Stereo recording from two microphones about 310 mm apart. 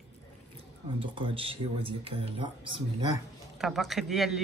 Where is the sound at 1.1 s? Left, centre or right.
Centre.